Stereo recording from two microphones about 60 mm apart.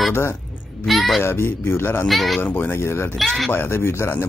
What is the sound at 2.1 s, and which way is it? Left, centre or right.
Speech, centre.